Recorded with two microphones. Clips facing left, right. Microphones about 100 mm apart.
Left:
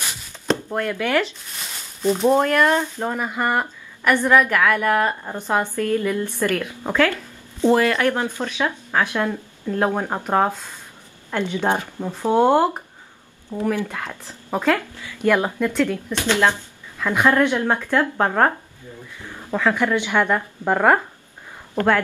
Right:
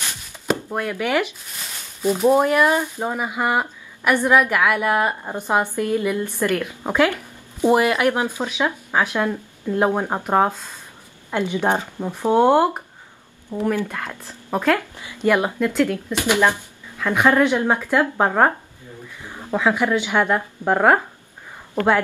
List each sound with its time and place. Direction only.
0.5 s chopping: 10° right (ahead or behind)
2.0 s speech: 10° right (ahead or behind)
13.7 s speech: 15° left (ahead or behind)
15.0 s speech: 15° right (ahead or behind)